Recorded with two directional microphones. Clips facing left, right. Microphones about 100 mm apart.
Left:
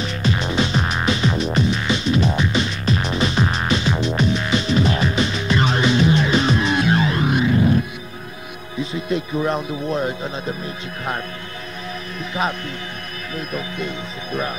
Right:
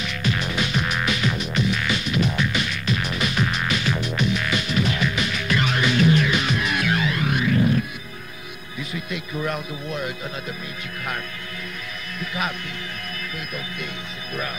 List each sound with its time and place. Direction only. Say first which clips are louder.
0.0 s music: left 4 dB; 30° left (ahead or behind)
8.7 s speech: left 8 dB; 25° left (ahead or behind)
13.6 s speech: left 6 dB; 30° left (ahead or behind)